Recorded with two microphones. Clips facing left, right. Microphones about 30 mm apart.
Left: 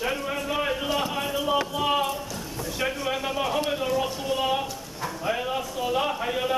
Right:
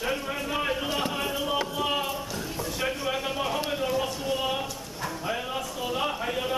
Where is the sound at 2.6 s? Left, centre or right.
Centre.